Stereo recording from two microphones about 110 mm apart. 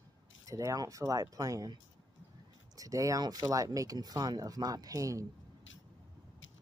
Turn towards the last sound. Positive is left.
turn(degrees=-30)  # may be behind; listen again after turning